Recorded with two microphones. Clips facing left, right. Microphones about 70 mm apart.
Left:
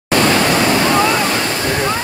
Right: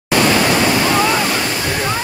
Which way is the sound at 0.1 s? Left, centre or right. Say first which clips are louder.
Even; centre.